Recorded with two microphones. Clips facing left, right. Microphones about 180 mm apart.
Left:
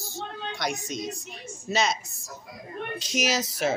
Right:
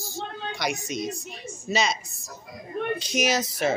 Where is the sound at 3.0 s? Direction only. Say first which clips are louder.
Even; 55° right (ahead or behind).